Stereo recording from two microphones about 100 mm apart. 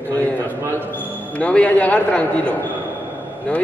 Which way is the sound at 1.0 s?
15° left (ahead or behind).